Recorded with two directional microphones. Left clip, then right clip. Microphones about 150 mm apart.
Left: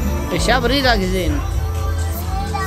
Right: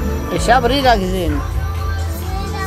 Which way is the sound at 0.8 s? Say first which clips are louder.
Right 3 dB; 5° left (ahead or behind).